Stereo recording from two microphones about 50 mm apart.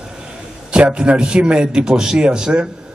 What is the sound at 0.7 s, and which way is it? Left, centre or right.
A man's voice, centre.